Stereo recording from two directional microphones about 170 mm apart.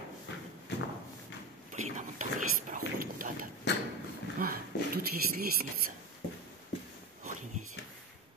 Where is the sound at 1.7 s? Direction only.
45° right (ahead or behind).